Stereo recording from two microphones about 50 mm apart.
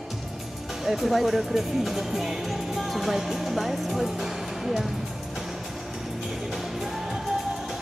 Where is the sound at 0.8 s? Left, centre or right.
Centre.